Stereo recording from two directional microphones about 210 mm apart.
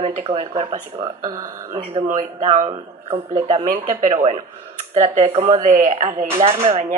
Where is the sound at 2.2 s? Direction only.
35° right (ahead or behind).